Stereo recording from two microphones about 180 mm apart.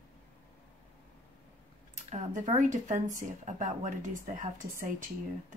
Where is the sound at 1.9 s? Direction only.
40° right (ahead or behind).